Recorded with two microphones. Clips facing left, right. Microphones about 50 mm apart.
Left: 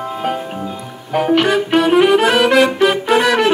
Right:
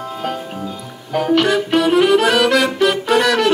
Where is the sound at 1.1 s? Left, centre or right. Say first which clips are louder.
Left 1 dB; centre.